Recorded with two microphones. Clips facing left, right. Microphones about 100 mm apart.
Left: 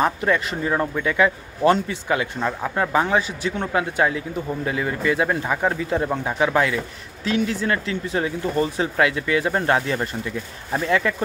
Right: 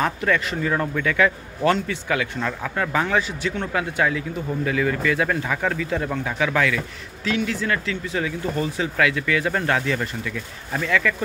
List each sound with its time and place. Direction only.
0.0 s a man's voice: 25° left (ahead or behind)